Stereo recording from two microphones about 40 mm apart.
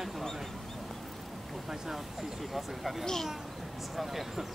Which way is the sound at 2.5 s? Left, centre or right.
Centre.